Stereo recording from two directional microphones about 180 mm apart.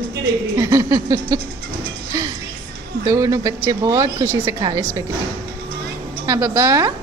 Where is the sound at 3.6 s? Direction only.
20° right (ahead or behind).